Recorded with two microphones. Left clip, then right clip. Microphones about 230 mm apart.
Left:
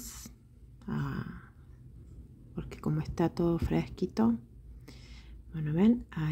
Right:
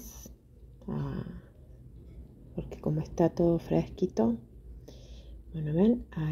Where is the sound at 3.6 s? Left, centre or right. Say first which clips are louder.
Right 4 dB; left.